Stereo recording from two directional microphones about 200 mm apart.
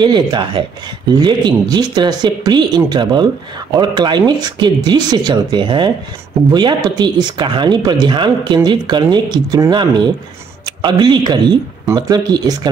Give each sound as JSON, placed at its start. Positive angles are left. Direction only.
{"t": 0.0, "sound": "speech", "side_deg": -20}